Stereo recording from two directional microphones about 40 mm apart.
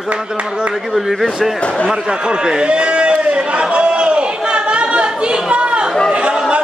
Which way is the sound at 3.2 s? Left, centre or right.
Right.